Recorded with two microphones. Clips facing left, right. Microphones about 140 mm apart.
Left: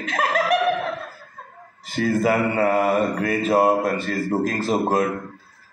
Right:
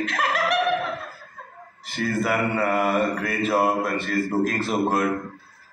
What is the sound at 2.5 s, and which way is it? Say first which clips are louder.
A man's voice: left 3 dB; 40° left (ahead or behind).